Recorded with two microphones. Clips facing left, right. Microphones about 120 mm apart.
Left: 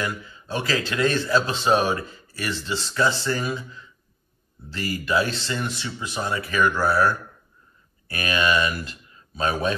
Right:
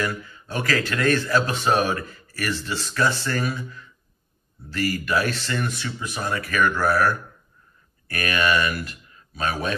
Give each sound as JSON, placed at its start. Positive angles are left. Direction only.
{"t": 0.0, "sound": "a man's voice", "side_deg": 20}
{"t": 8.1, "sound": "a man's voice", "side_deg": 25}